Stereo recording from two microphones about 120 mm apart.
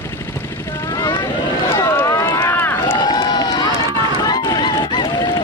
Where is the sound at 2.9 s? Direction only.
40° left (ahead or behind).